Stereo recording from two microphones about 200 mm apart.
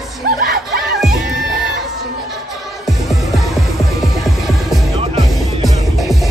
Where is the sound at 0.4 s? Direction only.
45° right (ahead or behind).